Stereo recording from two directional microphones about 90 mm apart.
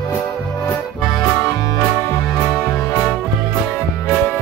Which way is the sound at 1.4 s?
40° left (ahead or behind).